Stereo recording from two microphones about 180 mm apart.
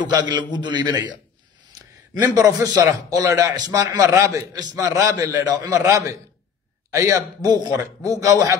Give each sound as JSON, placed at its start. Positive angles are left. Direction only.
{"t": 0.0, "sound": "a man's voice", "side_deg": -25}
{"t": 2.2, "sound": "a man's voice", "side_deg": -20}